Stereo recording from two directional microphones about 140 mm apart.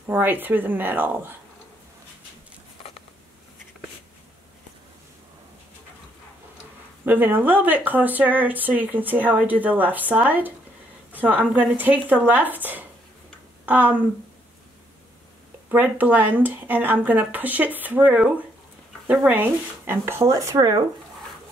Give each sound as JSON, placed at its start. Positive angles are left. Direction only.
{"t": 0.0, "sound": "speech", "side_deg": -15}
{"t": 7.1, "sound": "speech", "side_deg": -15}
{"t": 15.7, "sound": "speech", "side_deg": -10}